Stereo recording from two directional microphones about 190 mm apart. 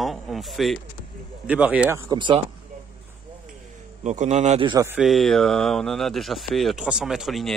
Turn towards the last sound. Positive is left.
turn(degrees=0)  # may be behind; listen again after turning